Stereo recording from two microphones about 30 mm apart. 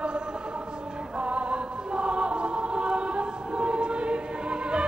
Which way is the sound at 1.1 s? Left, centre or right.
Right.